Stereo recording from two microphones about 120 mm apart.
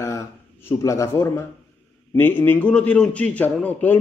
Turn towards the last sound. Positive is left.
turn(degrees=10)  # may be behind; listen again after turning